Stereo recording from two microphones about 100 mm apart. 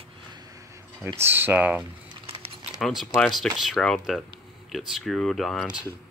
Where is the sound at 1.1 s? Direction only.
20° right (ahead or behind).